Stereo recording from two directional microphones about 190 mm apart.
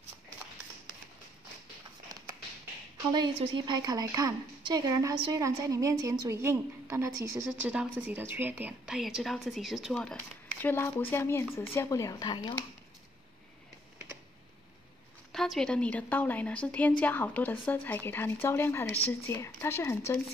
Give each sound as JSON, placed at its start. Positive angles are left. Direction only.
{"t": 3.1, "sound": "a woman's voice", "side_deg": -25}
{"t": 10.6, "sound": "a woman's voice", "side_deg": 10}
{"t": 15.3, "sound": "a woman's voice", "side_deg": 0}